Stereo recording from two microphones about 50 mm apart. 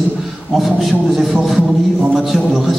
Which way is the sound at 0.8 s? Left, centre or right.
Centre.